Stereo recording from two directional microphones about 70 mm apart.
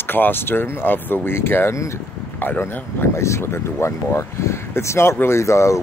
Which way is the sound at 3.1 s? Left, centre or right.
Left.